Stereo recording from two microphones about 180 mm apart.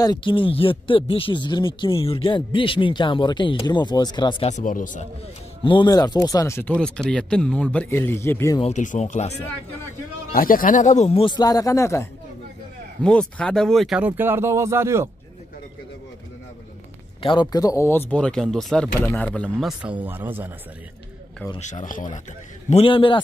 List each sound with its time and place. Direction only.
0.0 s speech: 25° left (ahead or behind)
4.5 s speech: 45° left (ahead or behind)
5.6 s speech: 25° left (ahead or behind)
8.5 s speech: 40° left (ahead or behind)
10.3 s speech: 50° left (ahead or behind); by 12.1 s 15° left (ahead or behind)
13.0 s speech: 5° left (ahead or behind); by 15.0 s 15° right (ahead or behind)
17.2 s speech: 25° left (ahead or behind); by 19.7 s 5° left (ahead or behind)
20.0 s speech: 10° right (ahead or behind)
21.5 s speech: 40° left (ahead or behind)
22.7 s speech: 30° left (ahead or behind)